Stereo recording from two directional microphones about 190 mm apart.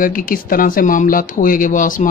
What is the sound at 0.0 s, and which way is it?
Speech, 50° left (ahead or behind).